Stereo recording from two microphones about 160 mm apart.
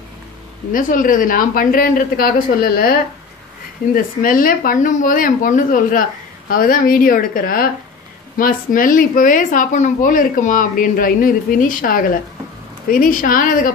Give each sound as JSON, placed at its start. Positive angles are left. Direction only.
{"t": 0.7, "sound": "speech", "side_deg": 60}